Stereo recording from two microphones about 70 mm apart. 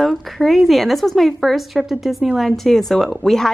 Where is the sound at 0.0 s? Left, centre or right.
Centre.